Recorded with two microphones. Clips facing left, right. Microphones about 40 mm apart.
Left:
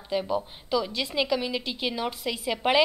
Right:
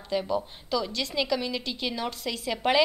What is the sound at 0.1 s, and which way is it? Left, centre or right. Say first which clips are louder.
A woman's voice: even; centre.